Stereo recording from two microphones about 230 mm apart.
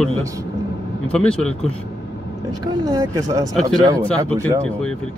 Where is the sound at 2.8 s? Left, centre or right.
Centre.